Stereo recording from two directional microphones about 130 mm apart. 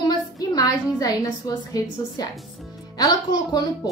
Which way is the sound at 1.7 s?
30° left (ahead or behind).